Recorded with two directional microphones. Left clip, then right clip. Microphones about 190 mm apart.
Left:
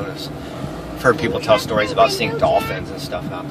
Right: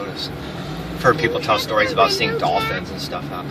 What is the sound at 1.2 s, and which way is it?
Speech, 50° left (ahead or behind).